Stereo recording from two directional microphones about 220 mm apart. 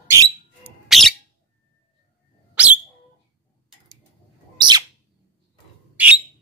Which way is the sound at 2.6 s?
5° right (ahead or behind).